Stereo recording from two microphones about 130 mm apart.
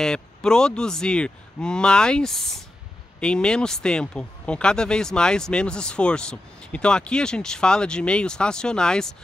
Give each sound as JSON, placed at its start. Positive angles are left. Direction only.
{"t": 0.0, "sound": "speech", "side_deg": 5}